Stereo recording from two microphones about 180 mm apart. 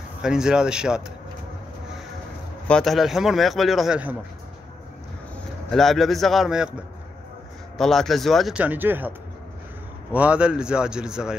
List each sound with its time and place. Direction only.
0.2 s speech: 5° right (ahead or behind)
2.7 s speech: centre (ahead or behind)
5.7 s speech: centre (ahead or behind)
7.7 s speech: centre (ahead or behind)
10.1 s speech: 5° right (ahead or behind)